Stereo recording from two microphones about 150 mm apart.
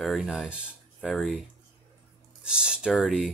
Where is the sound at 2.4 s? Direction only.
5° right (ahead or behind).